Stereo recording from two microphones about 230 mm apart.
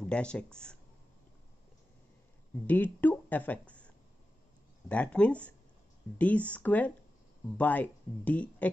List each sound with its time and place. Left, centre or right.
0.0 s speech: centre
2.6 s speech: centre